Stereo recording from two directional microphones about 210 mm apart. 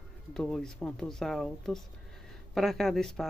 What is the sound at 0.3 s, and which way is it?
Speech, 5° left (ahead or behind).